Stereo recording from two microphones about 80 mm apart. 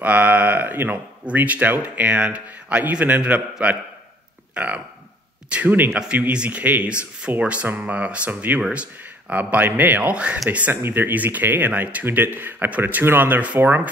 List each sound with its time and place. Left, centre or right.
0.0 s speech: centre
10.7 s speech: right